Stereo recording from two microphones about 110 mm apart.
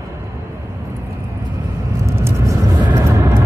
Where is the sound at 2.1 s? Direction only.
25° right (ahead or behind).